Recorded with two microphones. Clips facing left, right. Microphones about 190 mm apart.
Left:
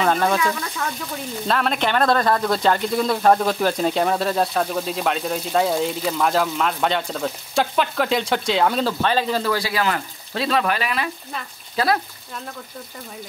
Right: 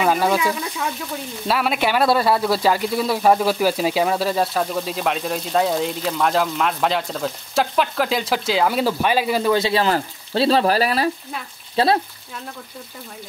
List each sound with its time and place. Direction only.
0.0 s speech: 10° right (ahead or behind); by 12.0 s 30° right (ahead or behind)